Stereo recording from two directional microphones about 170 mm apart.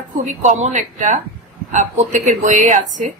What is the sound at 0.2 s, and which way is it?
A woman's voice, 45° right (ahead or behind).